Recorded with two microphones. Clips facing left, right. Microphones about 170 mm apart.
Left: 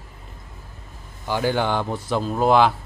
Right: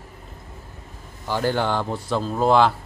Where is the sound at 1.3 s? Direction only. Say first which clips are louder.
Left 1 dB; centre (ahead or behind).